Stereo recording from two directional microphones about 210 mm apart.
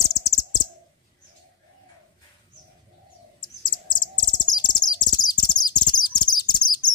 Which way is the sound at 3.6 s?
20° left (ahead or behind).